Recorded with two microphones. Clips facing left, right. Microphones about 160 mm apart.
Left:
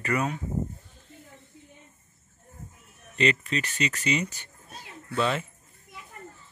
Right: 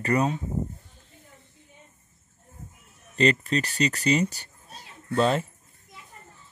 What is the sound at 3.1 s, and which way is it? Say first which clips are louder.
Speech: right 3 dB; 35° right (ahead or behind).